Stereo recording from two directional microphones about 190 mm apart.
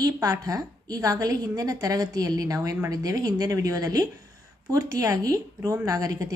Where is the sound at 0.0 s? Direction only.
20° right (ahead or behind).